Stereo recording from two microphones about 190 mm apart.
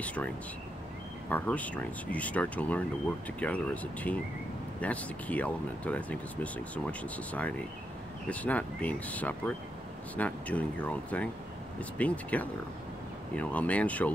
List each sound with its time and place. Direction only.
0.0 s speech: 5° left (ahead or behind)
1.3 s speech: 10° left (ahead or behind)